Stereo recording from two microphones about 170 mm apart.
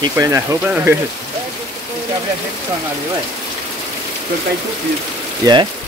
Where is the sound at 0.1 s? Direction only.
20° right (ahead or behind).